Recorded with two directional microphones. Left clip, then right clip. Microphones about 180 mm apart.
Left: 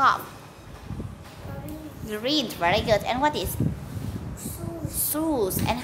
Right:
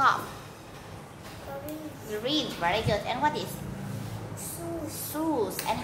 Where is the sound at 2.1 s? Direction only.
45° left (ahead or behind).